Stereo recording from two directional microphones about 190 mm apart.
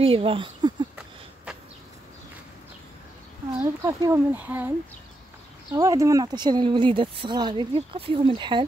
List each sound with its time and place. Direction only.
0.0 s speech: 30° right (ahead or behind)
0.9 s a sound: 5° right (ahead or behind)
3.8 s speech: 15° right (ahead or behind)